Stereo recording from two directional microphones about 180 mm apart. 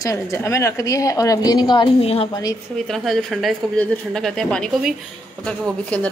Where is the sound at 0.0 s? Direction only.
15° left (ahead or behind); by 2.2 s 35° left (ahead or behind).